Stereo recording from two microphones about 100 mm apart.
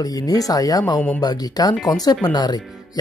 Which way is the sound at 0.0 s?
40° left (ahead or behind).